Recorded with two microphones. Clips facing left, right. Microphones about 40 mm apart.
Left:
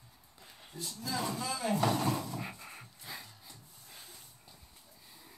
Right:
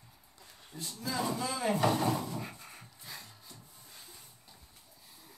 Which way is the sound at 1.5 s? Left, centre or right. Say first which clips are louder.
Right 1 dB; centre.